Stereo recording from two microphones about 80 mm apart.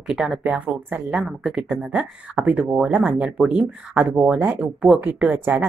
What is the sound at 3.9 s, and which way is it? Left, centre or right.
Speech, right.